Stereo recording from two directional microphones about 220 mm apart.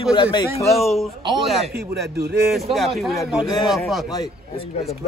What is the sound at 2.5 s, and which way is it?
Speech, centre (ahead or behind).